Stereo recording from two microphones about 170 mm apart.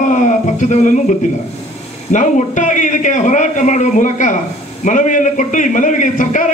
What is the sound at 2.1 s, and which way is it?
A man's voice, 50° left (ahead or behind).